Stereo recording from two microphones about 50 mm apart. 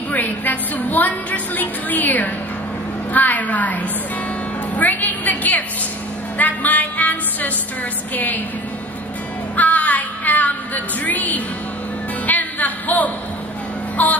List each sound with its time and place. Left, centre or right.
0.1 s a woman's voice: left
6.3 s music: left
8.1 s a woman's voice: left
9.6 s music: left
14.0 s a woman's voice: left